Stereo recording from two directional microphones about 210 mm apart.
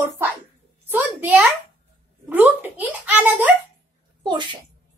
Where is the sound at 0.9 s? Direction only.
10° right (ahead or behind).